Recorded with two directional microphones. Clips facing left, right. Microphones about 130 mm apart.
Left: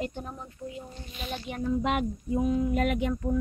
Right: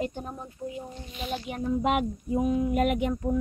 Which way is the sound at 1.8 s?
40° right (ahead or behind).